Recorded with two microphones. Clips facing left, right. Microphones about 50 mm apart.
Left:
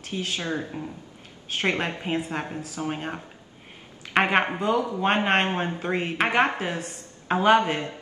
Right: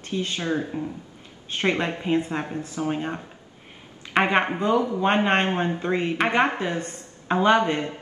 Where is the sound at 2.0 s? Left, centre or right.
Centre.